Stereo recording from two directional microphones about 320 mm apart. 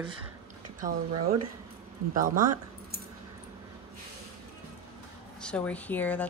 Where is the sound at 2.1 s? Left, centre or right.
Right.